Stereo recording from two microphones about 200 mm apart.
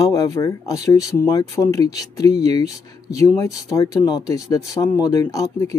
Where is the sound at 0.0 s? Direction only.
15° left (ahead or behind).